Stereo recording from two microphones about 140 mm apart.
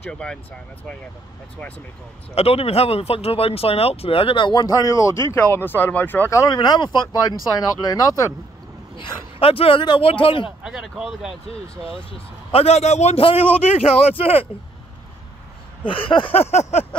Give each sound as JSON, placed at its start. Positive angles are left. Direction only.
{"t": 0.0, "sound": "speech", "side_deg": 5}
{"t": 2.3, "sound": "speech", "side_deg": 45}
{"t": 8.9, "sound": "speech", "side_deg": 40}
{"t": 10.6, "sound": "speech", "side_deg": -5}
{"t": 12.4, "sound": "speech", "side_deg": 45}
{"t": 15.8, "sound": "speech", "side_deg": 40}